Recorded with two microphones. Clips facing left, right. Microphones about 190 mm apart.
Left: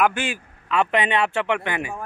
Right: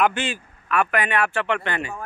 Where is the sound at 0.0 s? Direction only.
10° left (ahead or behind).